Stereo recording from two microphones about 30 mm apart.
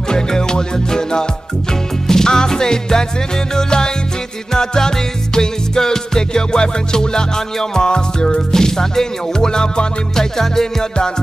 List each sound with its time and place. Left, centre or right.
0.1 s music: left